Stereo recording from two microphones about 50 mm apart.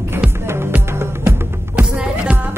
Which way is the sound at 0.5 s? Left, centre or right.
Right.